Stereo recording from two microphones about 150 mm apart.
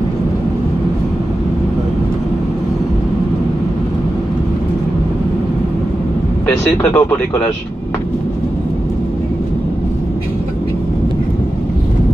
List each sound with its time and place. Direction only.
6.8 s speech: 15° left (ahead or behind)